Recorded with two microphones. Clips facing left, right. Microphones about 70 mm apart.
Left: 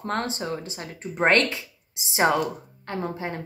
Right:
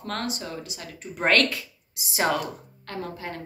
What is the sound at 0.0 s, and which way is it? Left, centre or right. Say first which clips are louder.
A woman's voice: left 3 dB; left.